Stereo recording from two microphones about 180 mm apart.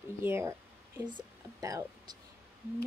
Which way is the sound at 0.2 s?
15° right (ahead or behind).